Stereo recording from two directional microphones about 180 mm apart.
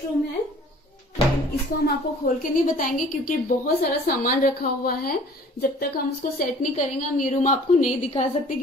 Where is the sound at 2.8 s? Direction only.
50° left (ahead or behind).